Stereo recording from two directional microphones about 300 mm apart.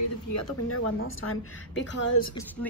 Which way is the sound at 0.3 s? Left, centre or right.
Left.